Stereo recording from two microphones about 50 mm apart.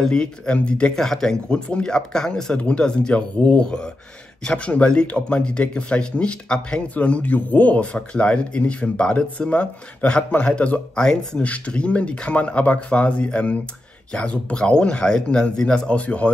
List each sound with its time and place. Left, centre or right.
0.0 s a man's voice: centre
0.9 s a man's voice: centre; by 10.7 s left
11.0 s speech: centre
11.4 s a man's voice: left